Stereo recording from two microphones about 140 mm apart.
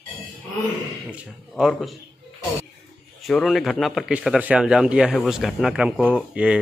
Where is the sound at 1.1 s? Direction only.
5° right (ahead or behind).